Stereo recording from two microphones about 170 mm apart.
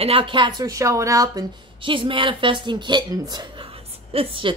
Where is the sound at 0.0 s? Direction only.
30° right (ahead or behind).